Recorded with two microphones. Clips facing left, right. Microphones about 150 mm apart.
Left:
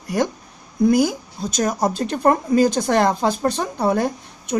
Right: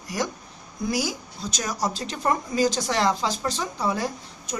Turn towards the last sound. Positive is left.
turn(degrees=55)  # may be behind; listen again after turning